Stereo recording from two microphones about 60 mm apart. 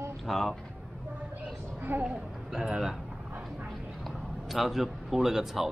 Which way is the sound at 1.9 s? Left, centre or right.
Right.